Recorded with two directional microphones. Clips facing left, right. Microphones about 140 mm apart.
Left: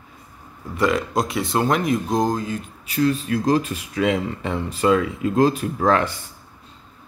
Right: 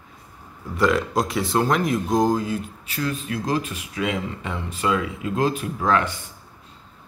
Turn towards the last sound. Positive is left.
turn(degrees=35)  # may be behind; listen again after turning